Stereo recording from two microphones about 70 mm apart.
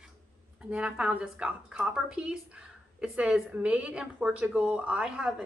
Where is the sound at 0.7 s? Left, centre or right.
Centre.